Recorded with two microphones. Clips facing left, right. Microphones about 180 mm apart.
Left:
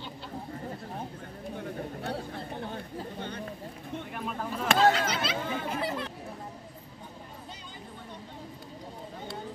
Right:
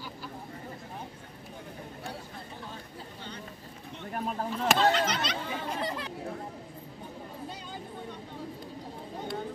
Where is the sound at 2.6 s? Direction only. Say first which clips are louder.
Left 6 dB; 55° left (ahead or behind).